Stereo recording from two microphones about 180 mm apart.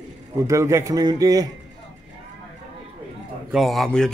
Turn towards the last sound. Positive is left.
turn(degrees=0)  # may be behind; listen again after turning